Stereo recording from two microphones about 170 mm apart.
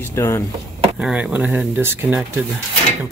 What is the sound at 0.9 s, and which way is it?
Speech, 5° right (ahead or behind).